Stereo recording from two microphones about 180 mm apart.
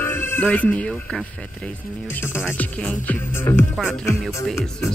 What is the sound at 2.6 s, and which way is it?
Speech, 5° left (ahead or behind).